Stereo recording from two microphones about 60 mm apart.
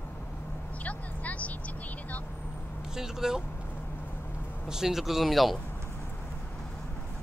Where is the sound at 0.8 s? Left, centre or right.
Left.